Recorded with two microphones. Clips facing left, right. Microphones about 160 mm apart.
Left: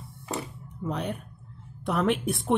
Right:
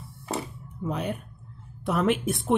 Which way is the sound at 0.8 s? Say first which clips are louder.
Right 1 dB; 5° right (ahead or behind).